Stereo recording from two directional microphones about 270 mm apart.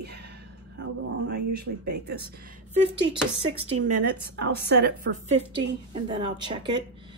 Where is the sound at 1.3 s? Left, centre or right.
Right.